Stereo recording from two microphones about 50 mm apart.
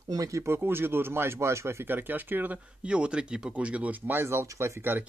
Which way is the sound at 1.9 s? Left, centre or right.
Right.